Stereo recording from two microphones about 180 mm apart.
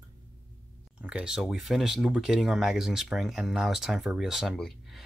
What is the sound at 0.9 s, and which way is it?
Speech, 5° right (ahead or behind).